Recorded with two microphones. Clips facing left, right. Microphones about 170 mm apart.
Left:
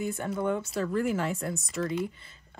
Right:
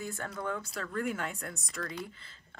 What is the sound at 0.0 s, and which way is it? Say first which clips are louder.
Speech: left 8 dB; 20° left (ahead or behind).